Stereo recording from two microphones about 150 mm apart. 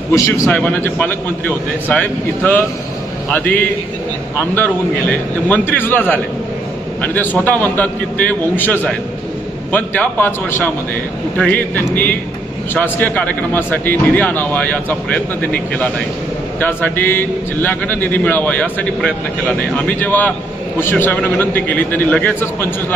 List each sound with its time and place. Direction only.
0.1 s a man's voice: 20° left (ahead or behind)
0.5 s a man's voice: 5° left (ahead or behind)